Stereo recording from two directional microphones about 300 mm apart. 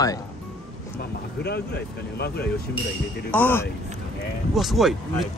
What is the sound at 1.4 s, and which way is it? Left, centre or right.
Speech, left.